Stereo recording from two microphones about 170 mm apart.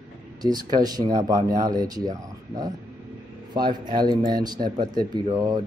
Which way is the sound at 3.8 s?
25° right (ahead or behind).